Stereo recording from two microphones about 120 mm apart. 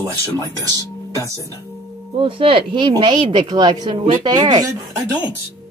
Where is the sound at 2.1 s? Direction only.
45° right (ahead or behind).